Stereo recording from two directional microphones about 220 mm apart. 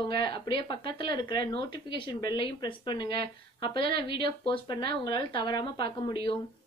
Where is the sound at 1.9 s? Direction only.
45° right (ahead or behind).